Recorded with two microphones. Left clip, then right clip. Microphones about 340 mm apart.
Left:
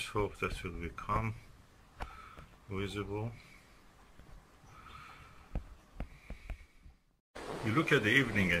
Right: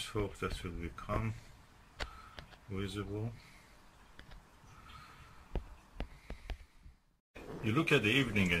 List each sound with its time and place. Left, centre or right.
0.0 s speech: centre
2.7 s speech: centre
7.3 s a sound: left
7.7 s speech: centre